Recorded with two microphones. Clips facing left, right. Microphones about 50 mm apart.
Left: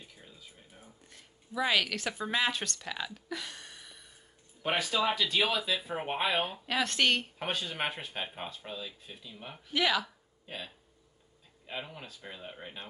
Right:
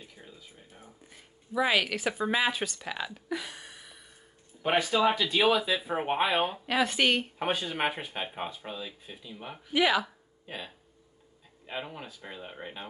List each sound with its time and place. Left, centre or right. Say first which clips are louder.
0.0 s speech: right 3 dB; centre